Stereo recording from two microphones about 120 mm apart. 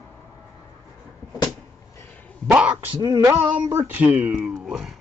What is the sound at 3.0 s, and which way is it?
Female singing, 35° right (ahead or behind).